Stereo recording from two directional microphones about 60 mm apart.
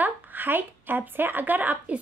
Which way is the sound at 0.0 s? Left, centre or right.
Right.